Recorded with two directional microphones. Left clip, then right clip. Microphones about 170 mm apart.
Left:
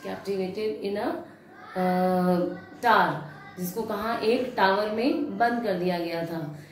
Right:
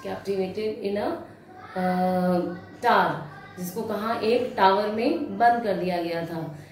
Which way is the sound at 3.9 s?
25° left (ahead or behind).